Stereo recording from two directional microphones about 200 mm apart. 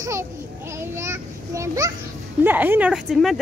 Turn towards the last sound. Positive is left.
turn(degrees=0)  # may be behind; listen again after turning